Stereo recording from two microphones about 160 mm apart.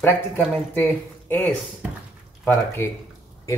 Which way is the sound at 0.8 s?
10° left (ahead or behind).